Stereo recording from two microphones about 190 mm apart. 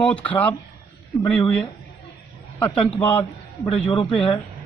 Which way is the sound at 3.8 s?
25° left (ahead or behind).